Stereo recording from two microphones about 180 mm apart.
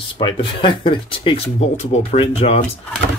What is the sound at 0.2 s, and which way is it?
Speech, 30° left (ahead or behind).